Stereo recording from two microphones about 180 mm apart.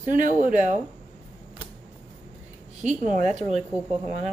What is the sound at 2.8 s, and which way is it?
Speech, 45° right (ahead or behind).